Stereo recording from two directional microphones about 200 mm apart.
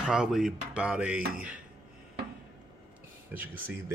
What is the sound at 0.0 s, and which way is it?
Speech, 5° right (ahead or behind).